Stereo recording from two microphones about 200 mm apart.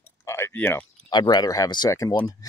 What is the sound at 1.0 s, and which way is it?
Speech, 20° left (ahead or behind).